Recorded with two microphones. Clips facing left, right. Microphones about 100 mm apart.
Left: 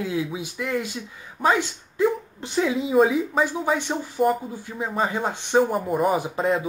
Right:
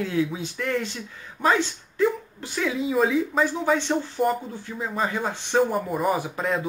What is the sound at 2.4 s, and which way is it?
Speech, 25° left (ahead or behind).